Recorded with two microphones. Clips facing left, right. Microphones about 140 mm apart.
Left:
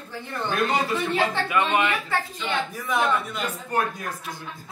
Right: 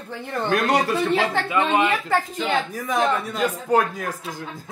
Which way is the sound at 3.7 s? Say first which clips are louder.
Right 6 dB; 90° right.